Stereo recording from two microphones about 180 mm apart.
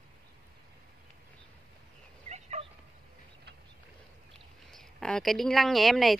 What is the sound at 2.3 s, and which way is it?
Dog, 40° right (ahead or behind).